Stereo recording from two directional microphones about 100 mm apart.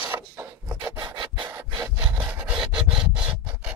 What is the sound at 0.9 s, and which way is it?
Rub, 45° right (ahead or behind).